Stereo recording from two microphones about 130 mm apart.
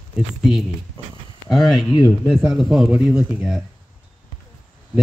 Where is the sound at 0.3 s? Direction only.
5° right (ahead or behind).